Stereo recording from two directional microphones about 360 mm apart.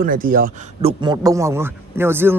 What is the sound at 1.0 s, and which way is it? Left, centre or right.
Speech, centre.